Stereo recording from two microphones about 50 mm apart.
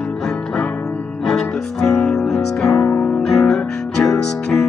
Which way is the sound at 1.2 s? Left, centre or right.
Centre.